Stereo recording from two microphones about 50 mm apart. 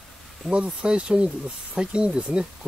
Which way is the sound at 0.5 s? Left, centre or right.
Right.